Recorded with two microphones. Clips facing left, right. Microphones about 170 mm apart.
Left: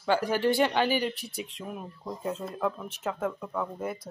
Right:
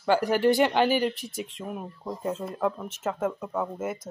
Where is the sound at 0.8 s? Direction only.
45° right (ahead or behind).